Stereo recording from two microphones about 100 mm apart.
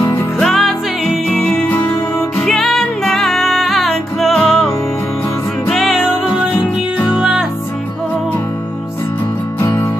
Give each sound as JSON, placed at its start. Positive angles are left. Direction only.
{"t": 0.0, "sound": "music", "side_deg": 25}
{"t": 0.4, "sound": "music", "side_deg": 0}
{"t": 1.7, "sound": "music", "side_deg": 15}
{"t": 5.7, "sound": "music", "side_deg": 0}
{"t": 7.2, "sound": "music", "side_deg": -5}
{"t": 9.6, "sound": "music", "side_deg": 20}